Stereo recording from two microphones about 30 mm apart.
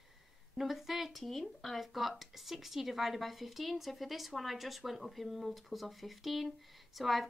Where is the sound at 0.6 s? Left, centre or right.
Centre.